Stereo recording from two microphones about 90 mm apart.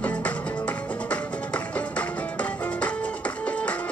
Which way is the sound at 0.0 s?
15° left (ahead or behind).